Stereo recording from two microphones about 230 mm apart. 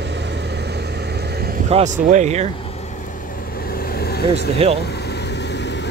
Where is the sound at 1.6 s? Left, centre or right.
Right.